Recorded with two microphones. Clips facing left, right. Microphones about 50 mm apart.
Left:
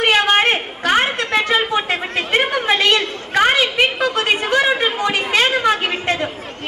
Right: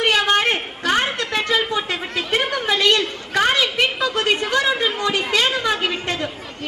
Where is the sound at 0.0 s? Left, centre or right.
Left.